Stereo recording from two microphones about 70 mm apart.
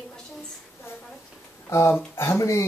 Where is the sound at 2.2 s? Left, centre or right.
Left.